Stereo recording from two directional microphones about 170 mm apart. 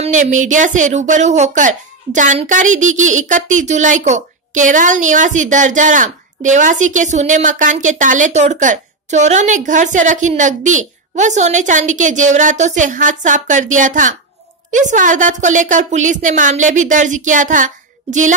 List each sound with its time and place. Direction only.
0.0 s a woman's voice: 45° right (ahead or behind)